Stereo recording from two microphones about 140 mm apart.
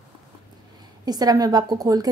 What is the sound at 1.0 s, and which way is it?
Speech, 30° right (ahead or behind).